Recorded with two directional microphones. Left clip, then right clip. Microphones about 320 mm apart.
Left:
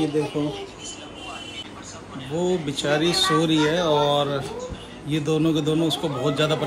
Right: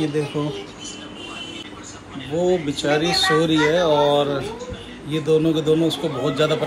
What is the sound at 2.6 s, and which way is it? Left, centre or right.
Speech, centre.